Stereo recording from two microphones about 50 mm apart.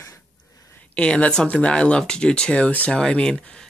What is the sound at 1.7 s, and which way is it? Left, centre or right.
Speech, centre.